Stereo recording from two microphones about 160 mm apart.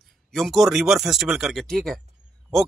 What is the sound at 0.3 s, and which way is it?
Speech, centre (ahead or behind).